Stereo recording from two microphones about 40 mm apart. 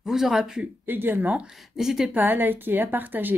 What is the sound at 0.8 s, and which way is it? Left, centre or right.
Speech, right.